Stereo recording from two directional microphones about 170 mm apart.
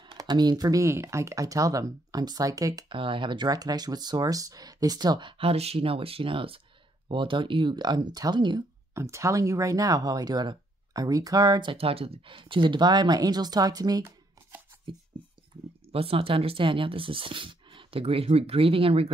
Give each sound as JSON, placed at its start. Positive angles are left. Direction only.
{"t": 0.0, "sound": "speech", "side_deg": -25}
{"t": 15.9, "sound": "speech", "side_deg": -35}